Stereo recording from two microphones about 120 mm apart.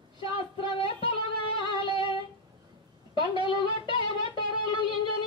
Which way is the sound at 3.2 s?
40° left (ahead or behind).